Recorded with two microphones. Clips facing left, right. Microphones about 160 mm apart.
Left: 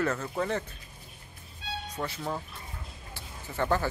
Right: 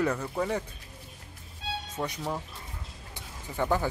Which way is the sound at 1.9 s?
15° right (ahead or behind).